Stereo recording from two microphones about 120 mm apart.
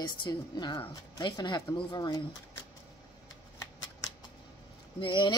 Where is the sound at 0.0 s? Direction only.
40° left (ahead or behind).